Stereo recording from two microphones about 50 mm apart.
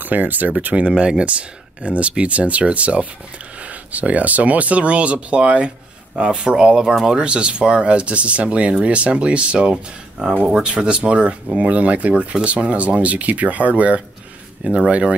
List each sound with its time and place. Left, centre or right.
0.0 s speech: right